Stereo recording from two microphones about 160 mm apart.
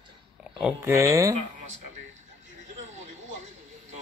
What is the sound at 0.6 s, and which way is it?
Speech, 15° right (ahead or behind).